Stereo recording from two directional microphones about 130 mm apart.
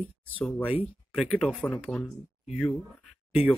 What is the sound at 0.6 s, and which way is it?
Speech, 10° right (ahead or behind).